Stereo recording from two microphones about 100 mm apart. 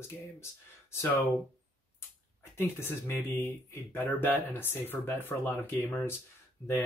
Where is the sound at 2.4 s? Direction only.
25° left (ahead or behind).